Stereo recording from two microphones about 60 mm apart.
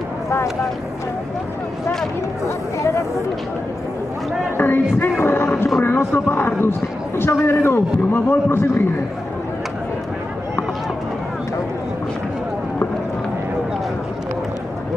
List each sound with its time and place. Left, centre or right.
2.4 s chatter: left
4.6 s a man's voice: left
5.2 s roaring cats: left
5.8 s a man's voice: left